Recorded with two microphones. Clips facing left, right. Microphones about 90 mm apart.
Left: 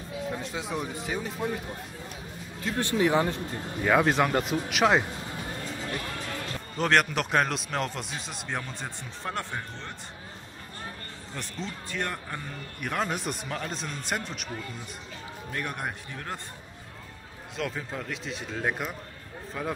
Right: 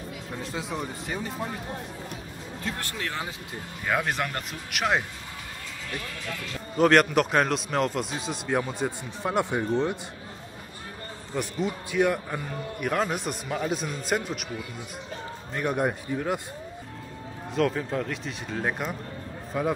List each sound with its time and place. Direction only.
0.3 s speech: centre (ahead or behind)
2.8 s speech: 20° left (ahead or behind)
3.8 s speech: centre (ahead or behind)
6.0 s speech: 35° left (ahead or behind)
6.8 s speech: 5° right (ahead or behind)
11.3 s speech: 10° right (ahead or behind)
17.6 s speech: centre (ahead or behind)